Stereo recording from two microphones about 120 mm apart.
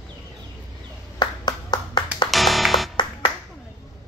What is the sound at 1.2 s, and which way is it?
Clapping, 35° left (ahead or behind).